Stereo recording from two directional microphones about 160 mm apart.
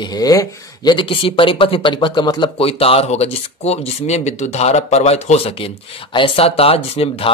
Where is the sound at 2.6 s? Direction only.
35° left (ahead or behind).